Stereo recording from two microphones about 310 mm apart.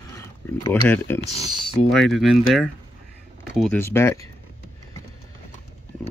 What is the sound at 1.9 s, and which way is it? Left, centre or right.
Speech, centre.